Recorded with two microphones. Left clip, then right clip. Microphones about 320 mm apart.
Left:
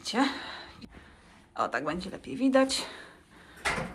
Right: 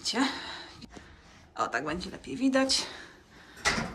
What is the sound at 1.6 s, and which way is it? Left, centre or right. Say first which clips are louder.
Speech: left 1 dB; centre.